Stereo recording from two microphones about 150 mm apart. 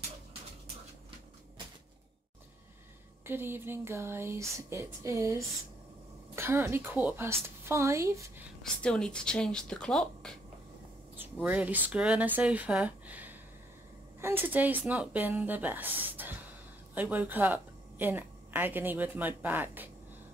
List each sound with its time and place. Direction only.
3.3 s a woman's voice: 15° right (ahead or behind)
8.6 s speech: 5° left (ahead or behind)
11.4 s a woman's voice: 10° right (ahead or behind)